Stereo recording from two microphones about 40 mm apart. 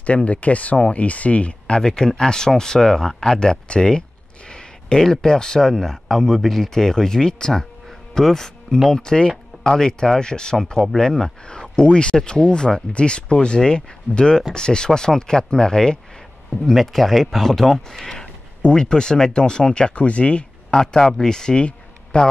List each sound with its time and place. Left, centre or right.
0.0 s speech: left
1.8 s speech: centre
4.5 s a sound: left
5.0 s speech: centre
16.6 s speech: centre
18.2 s speech: left
20.7 s speech: centre